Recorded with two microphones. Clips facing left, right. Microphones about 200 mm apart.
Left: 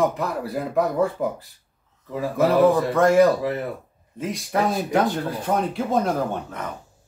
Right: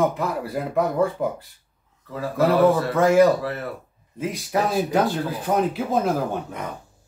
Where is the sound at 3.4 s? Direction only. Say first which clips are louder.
Left 3 dB; 15° left (ahead or behind).